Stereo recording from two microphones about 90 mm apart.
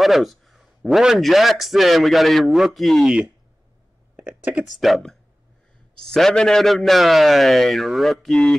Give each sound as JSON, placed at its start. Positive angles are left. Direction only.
{"t": 0.0, "sound": "a man's voice", "side_deg": 0}
{"t": 4.6, "sound": "a man's voice", "side_deg": 0}